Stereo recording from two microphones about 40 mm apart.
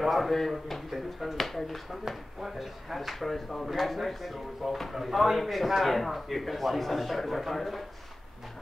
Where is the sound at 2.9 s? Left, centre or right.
Centre.